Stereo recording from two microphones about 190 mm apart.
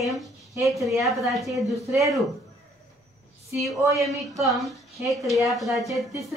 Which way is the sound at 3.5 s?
15° right (ahead or behind).